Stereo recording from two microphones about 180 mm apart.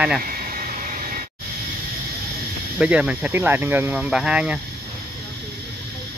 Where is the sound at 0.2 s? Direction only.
50° right (ahead or behind).